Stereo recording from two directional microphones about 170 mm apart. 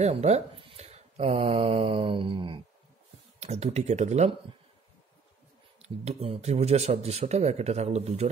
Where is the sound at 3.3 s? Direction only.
40° right (ahead or behind).